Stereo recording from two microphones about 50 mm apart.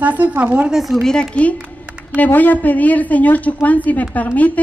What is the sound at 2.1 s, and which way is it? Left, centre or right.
A woman's voice, left.